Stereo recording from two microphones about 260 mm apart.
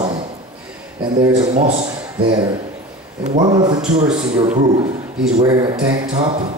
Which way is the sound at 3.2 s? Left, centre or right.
Right.